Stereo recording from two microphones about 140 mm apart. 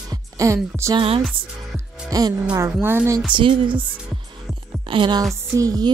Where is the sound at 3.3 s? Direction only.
35° right (ahead or behind).